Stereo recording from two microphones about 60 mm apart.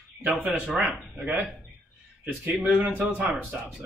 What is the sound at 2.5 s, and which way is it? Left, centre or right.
Speech, centre.